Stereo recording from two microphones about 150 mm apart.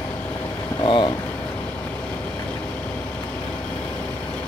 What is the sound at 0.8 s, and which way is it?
Speech, 35° left (ahead or behind).